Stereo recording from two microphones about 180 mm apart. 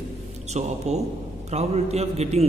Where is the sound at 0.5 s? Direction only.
40° right (ahead or behind).